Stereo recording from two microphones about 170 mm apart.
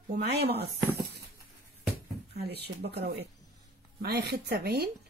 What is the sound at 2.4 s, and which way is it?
Speech, 70° right (ahead or behind).